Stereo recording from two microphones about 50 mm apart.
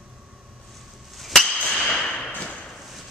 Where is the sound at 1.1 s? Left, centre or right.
Centre.